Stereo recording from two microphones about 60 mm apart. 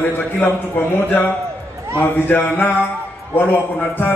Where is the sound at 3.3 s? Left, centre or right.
Left.